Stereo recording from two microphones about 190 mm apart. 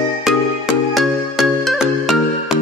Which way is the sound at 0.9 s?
Centre (ahead or behind).